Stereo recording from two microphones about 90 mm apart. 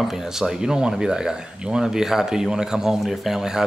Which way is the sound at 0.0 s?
Centre (ahead or behind).